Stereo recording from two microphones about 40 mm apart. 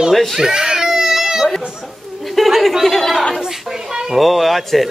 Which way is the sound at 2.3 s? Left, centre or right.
Centre.